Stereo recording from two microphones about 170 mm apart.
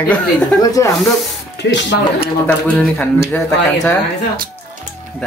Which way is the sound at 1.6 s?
90° left.